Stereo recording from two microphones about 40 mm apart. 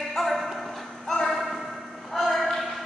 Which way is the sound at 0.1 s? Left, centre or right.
Centre.